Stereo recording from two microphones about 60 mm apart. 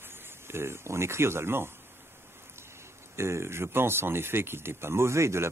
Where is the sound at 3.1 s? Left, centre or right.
Right.